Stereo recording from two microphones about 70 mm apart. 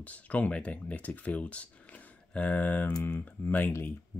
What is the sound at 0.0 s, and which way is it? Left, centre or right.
Speech, left.